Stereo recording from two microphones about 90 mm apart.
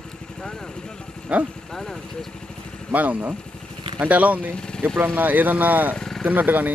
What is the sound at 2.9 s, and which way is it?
Speech, 15° right (ahead or behind).